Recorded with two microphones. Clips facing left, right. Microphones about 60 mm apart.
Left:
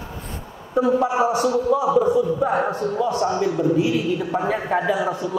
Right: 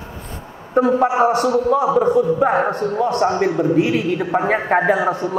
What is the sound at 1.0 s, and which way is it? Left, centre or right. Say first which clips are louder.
A man's voice: right 4 dB; right.